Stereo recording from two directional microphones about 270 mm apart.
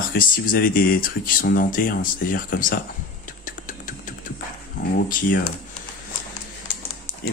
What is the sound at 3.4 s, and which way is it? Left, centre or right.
Beatboxing, left.